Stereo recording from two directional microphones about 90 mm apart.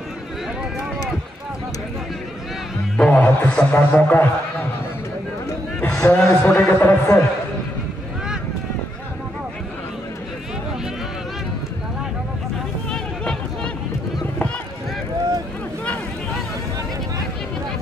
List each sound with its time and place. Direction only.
3.0 s speech: 15° left (ahead or behind)
5.9 s a man's voice: 25° left (ahead or behind)
12.9 s a sound: 10° left (ahead or behind)